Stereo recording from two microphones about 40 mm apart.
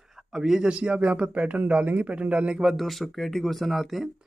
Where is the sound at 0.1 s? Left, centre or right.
Centre.